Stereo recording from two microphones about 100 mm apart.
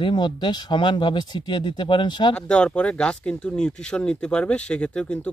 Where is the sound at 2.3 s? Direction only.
10° left (ahead or behind).